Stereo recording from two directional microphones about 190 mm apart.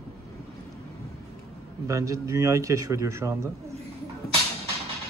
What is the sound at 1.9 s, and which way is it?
Speech, 15° right (ahead or behind).